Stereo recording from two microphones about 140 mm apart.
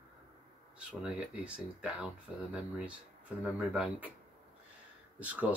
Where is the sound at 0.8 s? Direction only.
10° right (ahead or behind).